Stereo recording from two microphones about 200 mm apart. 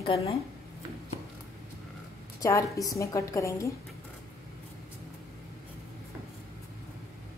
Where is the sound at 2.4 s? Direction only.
15° left (ahead or behind).